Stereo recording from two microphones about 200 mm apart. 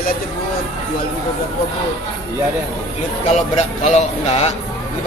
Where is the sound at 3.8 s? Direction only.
35° left (ahead or behind).